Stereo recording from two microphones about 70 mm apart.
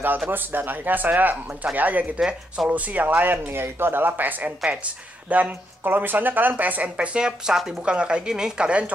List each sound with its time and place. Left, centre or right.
0.3 s speech: right
2.1 s speech: centre
2.7 s speech: right